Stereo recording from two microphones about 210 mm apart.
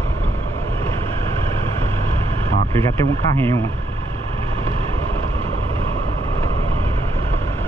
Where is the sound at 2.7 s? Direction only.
15° left (ahead or behind).